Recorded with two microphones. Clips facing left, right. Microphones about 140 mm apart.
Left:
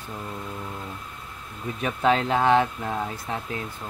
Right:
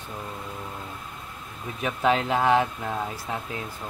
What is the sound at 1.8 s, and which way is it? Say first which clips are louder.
Speech: left 1 dB; 5° right (ahead or behind).